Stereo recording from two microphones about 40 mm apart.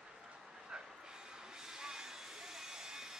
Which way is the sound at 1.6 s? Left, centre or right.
Centre.